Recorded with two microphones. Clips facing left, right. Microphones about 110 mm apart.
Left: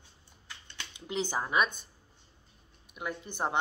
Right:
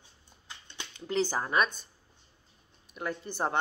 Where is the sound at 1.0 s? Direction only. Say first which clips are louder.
Right 3 dB; 15° left (ahead or behind).